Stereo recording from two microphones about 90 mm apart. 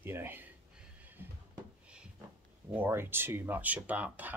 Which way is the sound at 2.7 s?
25° right (ahead or behind).